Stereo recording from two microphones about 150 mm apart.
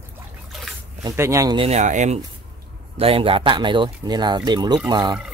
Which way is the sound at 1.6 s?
50° right (ahead or behind).